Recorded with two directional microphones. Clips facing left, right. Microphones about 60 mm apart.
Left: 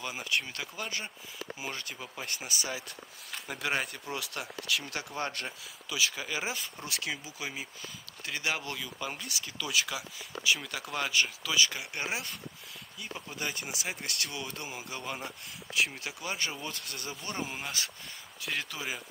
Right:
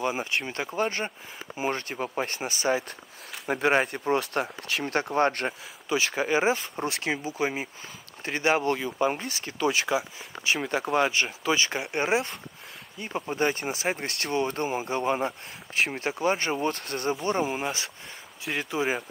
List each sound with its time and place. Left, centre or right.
0.0 s speech: right